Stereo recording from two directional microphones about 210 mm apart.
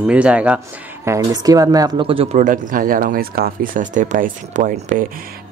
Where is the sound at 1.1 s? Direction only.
15° right (ahead or behind).